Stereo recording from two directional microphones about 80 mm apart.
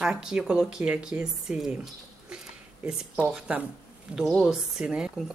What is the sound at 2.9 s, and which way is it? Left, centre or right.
Speech, centre.